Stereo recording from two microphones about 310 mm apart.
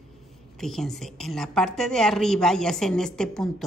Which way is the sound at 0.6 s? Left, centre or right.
Centre.